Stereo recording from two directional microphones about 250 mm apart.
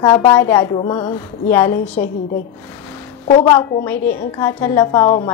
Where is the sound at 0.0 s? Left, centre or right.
Centre.